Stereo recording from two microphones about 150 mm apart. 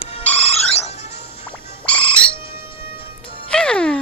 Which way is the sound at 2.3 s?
35° left (ahead or behind).